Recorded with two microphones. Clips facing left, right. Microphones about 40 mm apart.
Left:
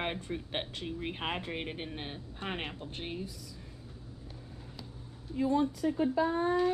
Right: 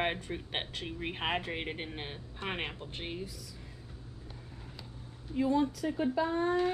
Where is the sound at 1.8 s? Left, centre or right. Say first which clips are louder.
Even; right.